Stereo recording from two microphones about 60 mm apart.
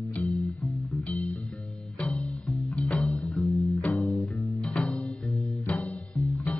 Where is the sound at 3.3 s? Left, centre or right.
Centre.